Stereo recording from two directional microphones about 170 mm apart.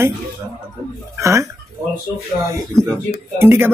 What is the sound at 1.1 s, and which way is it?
Speech, 15° right (ahead or behind).